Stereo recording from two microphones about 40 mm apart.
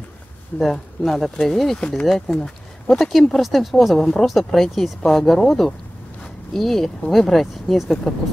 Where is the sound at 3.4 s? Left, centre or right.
Centre.